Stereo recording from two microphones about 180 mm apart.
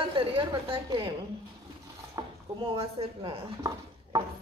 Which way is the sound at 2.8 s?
30° right (ahead or behind).